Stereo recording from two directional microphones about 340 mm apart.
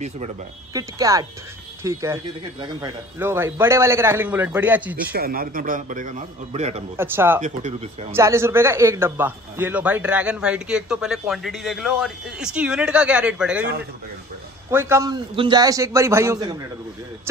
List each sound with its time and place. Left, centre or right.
0.7 s a man's voice: centre
5.1 s a man's voice: right
7.0 s a man's voice: centre
7.4 s a man's voice: centre
8.1 s a man's voice: centre
14.7 s a man's voice: centre